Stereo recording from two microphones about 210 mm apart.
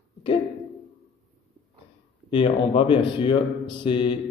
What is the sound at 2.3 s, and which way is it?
A man's voice, 25° left (ahead or behind).